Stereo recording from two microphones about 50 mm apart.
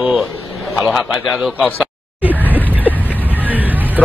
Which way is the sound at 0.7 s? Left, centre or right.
Centre.